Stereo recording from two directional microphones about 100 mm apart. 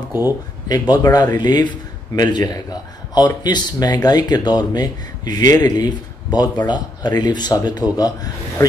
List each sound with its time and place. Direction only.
0.7 s speech: 40° left (ahead or behind)